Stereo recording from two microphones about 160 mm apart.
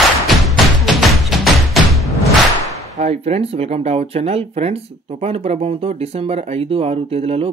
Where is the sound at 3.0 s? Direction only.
40° right (ahead or behind).